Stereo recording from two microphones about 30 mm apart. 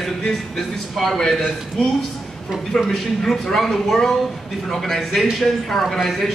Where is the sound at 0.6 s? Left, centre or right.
Centre.